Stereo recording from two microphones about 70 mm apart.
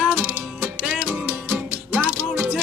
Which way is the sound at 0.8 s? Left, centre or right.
Centre.